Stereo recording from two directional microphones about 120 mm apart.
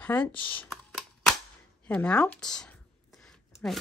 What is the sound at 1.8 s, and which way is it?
Speech, 10° left (ahead or behind).